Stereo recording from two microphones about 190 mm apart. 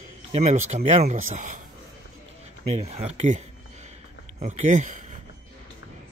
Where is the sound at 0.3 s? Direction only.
35° right (ahead or behind).